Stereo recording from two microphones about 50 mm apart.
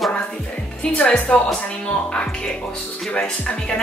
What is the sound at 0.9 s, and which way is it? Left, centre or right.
Speech, left.